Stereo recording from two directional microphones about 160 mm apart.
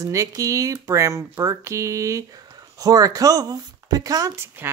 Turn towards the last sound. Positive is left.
turn(degrees=-15)  # may be behind; listen again after turning